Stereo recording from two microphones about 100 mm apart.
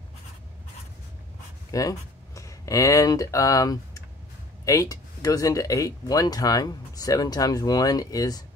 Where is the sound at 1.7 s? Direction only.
35° left (ahead or behind).